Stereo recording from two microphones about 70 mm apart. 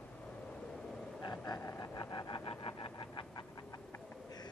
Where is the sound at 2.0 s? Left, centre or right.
Left.